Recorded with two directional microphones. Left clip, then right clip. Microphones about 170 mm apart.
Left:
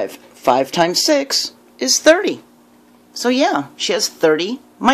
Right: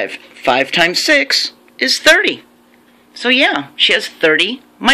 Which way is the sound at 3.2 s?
25° left (ahead or behind).